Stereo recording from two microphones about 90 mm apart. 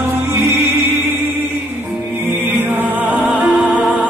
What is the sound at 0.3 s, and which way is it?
Music, 30° right (ahead or behind).